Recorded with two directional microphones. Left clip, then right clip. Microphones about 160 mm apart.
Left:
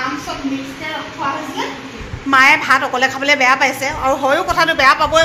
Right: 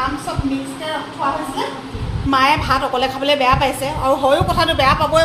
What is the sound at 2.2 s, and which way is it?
A woman's voice, 5° right (ahead or behind).